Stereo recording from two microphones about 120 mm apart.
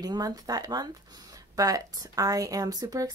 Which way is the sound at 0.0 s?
35° right (ahead or behind).